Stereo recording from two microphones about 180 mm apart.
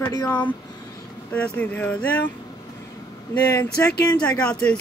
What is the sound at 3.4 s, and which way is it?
Speech, 20° left (ahead or behind).